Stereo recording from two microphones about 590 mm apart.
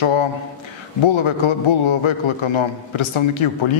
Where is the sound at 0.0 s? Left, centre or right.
Left.